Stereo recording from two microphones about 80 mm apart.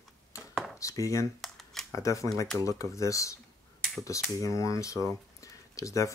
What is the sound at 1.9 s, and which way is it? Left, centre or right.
Speech, left.